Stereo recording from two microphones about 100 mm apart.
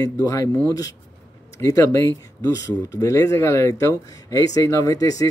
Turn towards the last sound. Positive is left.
turn(degrees=35)  # may be behind; listen again after turning